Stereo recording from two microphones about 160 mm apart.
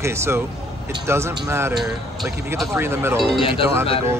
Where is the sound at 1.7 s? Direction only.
5° right (ahead or behind).